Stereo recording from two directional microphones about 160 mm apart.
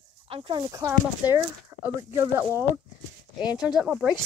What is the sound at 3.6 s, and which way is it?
Speech, 5° right (ahead or behind).